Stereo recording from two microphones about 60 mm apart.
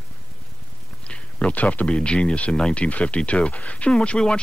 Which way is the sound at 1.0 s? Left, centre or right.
Centre.